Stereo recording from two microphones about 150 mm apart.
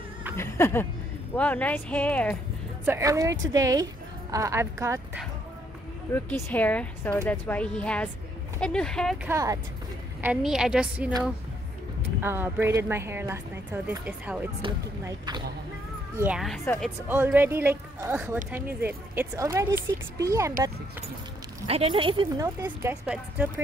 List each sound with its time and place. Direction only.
0.4 s speech: 15° left (ahead or behind)
2.8 s a woman's voice: 15° right (ahead or behind)
6.1 s speech: 10° left (ahead or behind)
9.2 s a woman's voice: 20° right (ahead or behind)
10.2 s speech: 5° right (ahead or behind)
12.2 s speech: 15° right (ahead or behind)
15.0 s a woman's voice: 25° right (ahead or behind)
16.2 s speech: 5° right (ahead or behind)
17.1 s a woman's voice: 15° right (ahead or behind)
21.6 s speech: 40° right (ahead or behind)
22.4 s speech: 15° right (ahead or behind)